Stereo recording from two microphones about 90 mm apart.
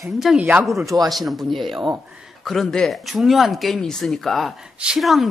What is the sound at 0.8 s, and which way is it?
Speech, 45° right (ahead or behind).